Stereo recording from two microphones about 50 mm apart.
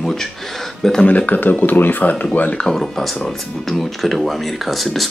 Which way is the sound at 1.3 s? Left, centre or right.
Left.